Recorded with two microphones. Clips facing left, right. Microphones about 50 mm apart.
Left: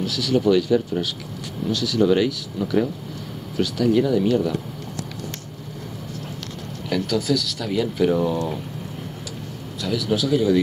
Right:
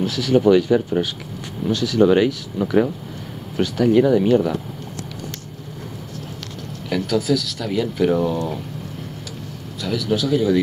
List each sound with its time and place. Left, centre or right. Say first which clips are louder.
0.0 s speech: right 4 dB; right
6.9 s speech: right 2 dB; centre
9.8 s speech: right 1 dB; centre